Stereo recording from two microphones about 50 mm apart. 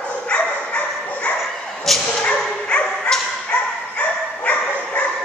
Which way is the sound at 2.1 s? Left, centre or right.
Centre.